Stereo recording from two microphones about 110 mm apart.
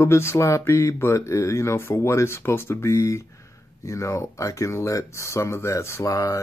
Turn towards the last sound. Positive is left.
turn(degrees=30)  # may be behind; listen again after turning